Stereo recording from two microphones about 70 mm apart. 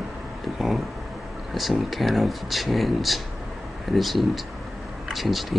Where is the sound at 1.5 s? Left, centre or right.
Centre.